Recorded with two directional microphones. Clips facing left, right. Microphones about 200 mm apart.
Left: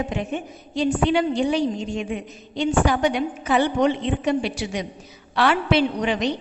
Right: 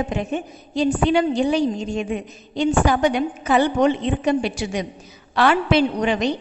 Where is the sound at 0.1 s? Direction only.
40° right (ahead or behind).